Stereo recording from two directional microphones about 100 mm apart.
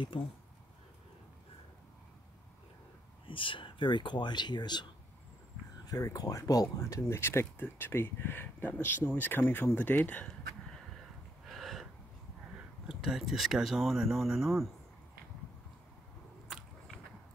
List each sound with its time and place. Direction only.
3.3 s speech: 60° left (ahead or behind)
5.9 s speech: 35° left (ahead or behind); by 10.3 s 15° left (ahead or behind)
11.4 s a sound: centre (ahead or behind)
12.5 s speech: 5° right (ahead or behind)